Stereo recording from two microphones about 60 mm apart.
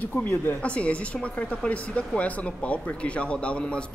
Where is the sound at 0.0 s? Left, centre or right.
Left.